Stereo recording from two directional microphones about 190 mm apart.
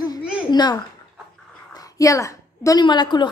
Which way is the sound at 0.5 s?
20° left (ahead or behind).